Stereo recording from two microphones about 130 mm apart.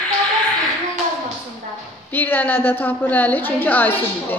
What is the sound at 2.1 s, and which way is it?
A woman's voice, 15° left (ahead or behind).